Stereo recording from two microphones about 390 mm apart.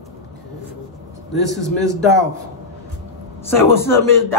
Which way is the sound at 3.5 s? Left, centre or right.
Centre.